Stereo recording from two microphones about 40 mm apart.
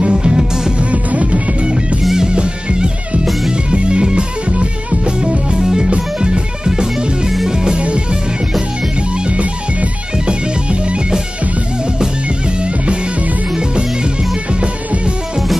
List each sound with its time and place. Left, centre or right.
0.0 s music: centre
0.7 s music: right
5.6 s music: centre
7.8 s music: right
10.1 s music: right
12.5 s music: right